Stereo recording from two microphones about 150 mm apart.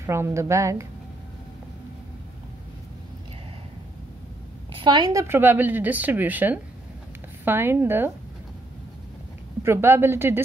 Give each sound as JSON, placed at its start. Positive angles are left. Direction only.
{"t": 0.0, "sound": "a woman's voice", "side_deg": -20}
{"t": 4.7, "sound": "a woman's voice", "side_deg": -30}
{"t": 9.6, "sound": "a woman's voice", "side_deg": -15}